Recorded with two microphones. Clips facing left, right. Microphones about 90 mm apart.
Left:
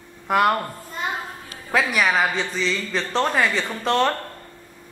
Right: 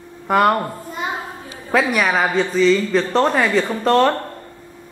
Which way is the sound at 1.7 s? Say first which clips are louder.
Right 3 dB; centre (ahead or behind).